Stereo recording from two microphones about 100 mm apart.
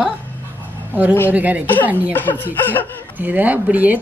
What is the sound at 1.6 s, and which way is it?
Speech, 15° left (ahead or behind).